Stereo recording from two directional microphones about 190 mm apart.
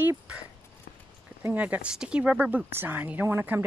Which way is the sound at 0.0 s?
10° right (ahead or behind).